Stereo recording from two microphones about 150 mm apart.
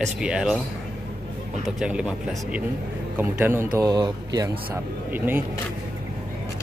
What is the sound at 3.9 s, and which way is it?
Speech, 25° right (ahead or behind).